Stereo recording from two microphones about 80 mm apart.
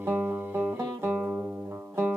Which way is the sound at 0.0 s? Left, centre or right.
Right.